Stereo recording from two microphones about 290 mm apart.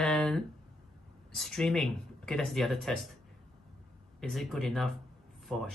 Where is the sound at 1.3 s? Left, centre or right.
Centre.